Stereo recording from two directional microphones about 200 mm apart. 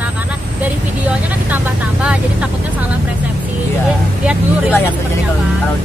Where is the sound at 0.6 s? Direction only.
5° right (ahead or behind).